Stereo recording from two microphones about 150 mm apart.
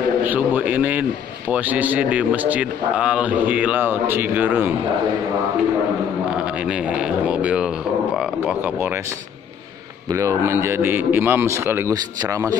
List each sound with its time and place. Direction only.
0.2 s a sound: 10° right (ahead or behind)
1.5 s a man's voice: 10° right (ahead or behind)
6.3 s a man's voice: 5° right (ahead or behind)
10.1 s a man's voice: 20° right (ahead or behind)